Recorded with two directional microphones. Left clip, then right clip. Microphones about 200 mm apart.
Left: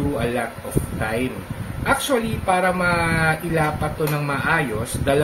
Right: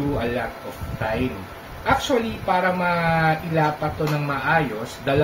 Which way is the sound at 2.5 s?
30° left (ahead or behind).